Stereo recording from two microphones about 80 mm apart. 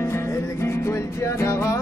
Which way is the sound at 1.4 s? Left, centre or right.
Left.